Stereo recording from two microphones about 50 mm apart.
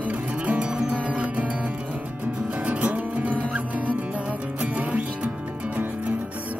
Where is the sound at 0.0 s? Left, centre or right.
Right.